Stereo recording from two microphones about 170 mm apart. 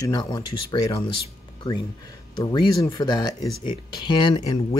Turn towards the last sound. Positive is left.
turn(degrees=25)  # may be behind; listen again after turning